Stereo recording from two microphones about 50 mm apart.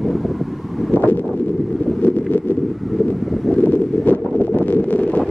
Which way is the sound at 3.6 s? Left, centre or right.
Left.